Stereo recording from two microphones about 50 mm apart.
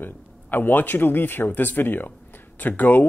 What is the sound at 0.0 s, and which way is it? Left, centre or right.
Speech, left.